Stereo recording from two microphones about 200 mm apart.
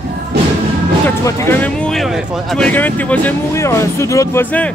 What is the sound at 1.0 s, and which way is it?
Speech, 10° left (ahead or behind).